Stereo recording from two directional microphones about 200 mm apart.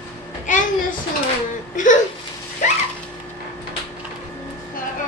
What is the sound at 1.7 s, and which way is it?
Speech, 40° left (ahead or behind).